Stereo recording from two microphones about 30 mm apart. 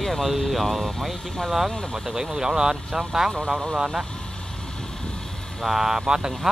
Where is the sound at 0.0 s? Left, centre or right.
Centre.